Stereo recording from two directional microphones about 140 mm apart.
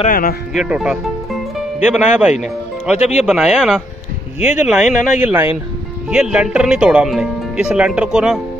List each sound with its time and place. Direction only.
0.1 s speech: 90° left
0.6 s speech: 5° right (ahead or behind)